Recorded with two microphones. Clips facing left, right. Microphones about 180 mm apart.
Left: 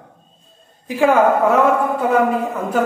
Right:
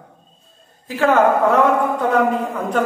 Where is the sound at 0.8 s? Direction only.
15° left (ahead or behind).